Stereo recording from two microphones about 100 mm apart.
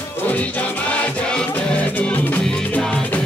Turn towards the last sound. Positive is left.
turn(degrees=10)  # may be behind; listen again after turning